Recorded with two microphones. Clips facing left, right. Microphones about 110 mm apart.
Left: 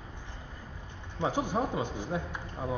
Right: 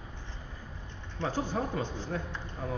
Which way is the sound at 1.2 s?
15° left (ahead or behind).